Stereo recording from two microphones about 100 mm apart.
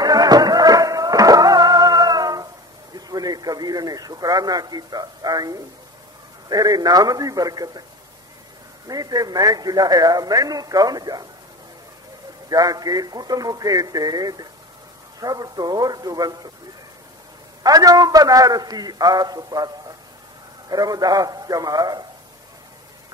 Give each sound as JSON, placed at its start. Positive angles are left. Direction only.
{"t": 0.0, "sound": "music", "side_deg": -40}
{"t": 3.1, "sound": "a man's voice", "side_deg": -40}
{"t": 8.8, "sound": "a man's voice", "side_deg": -40}
{"t": 12.4, "sound": "a man's voice", "side_deg": -40}
{"t": 17.6, "sound": "a man's voice", "side_deg": -40}